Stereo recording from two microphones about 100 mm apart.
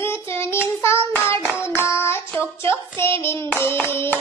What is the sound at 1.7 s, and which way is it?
Child singing, 25° left (ahead or behind).